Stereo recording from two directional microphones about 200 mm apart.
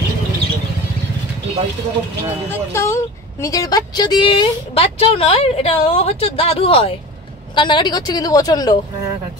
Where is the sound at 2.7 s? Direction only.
15° left (ahead or behind).